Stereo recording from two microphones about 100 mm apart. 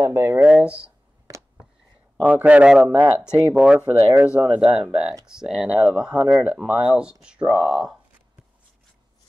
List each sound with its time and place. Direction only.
0.1 s speech: 25° right (ahead or behind)
1.2 s a sound: 30° right (ahead or behind)
2.2 s speech: 15° right (ahead or behind)